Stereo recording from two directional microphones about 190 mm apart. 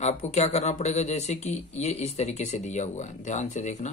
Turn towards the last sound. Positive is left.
turn(degrees=40)  # may be behind; listen again after turning